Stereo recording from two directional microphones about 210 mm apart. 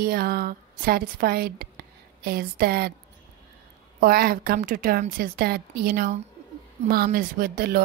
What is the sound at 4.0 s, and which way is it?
A woman's voice, 45° right (ahead or behind).